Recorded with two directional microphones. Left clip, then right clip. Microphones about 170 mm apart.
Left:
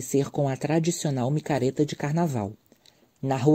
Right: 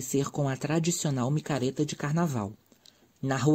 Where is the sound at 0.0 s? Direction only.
15° left (ahead or behind).